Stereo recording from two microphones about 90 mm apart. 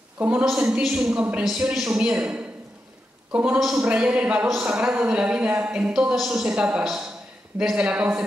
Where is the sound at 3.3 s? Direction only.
15° right (ahead or behind).